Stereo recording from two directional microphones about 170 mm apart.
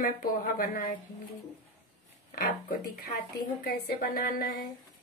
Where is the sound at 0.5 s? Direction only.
55° left (ahead or behind).